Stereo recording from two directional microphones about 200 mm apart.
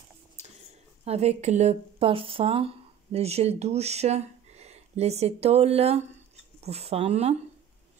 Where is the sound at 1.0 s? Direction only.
30° right (ahead or behind).